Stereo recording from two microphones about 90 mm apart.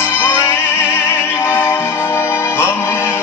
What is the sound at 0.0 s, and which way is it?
Music, 25° left (ahead or behind).